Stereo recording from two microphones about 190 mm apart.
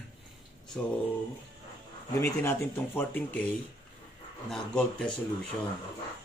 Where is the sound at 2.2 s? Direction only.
10° left (ahead or behind).